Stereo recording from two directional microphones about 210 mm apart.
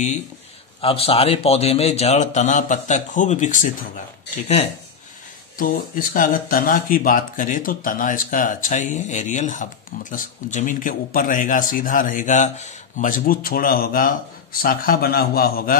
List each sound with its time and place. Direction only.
0.7 s speech: 25° left (ahead or behind)
5.6 s speech: 40° left (ahead or behind)